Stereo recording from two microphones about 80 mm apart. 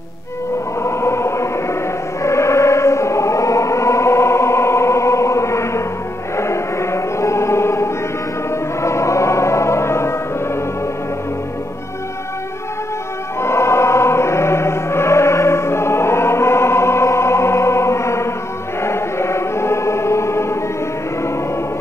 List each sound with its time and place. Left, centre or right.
0.8 s music: left
2.2 s chant: left
6.3 s choir: left
8.8 s music: left
13.4 s music: left
18.8 s choir: left